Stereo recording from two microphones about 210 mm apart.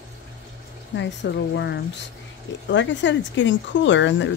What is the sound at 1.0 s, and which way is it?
Speech, 55° left (ahead or behind).